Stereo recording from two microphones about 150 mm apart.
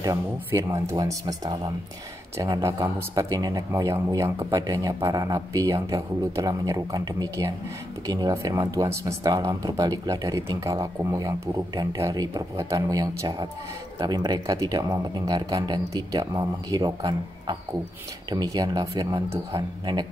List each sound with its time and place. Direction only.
0.0 s speech: 20° right (ahead or behind)